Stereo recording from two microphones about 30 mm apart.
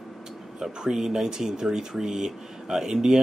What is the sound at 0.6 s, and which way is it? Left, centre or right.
Speech, centre.